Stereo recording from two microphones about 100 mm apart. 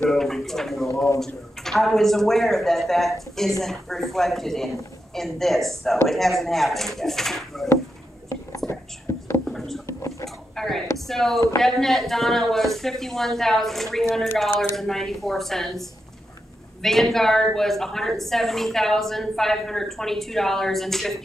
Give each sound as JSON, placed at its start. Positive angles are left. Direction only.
{"t": 0.1, "sound": "a woman's voice", "side_deg": 5}
{"t": 8.6, "sound": "whispering", "side_deg": 25}
{"t": 9.4, "sound": "a sound", "side_deg": 5}
{"t": 11.1, "sound": "a woman's voice", "side_deg": 5}